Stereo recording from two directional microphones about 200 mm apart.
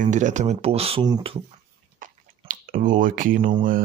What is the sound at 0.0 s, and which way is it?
Speech, 35° right (ahead or behind).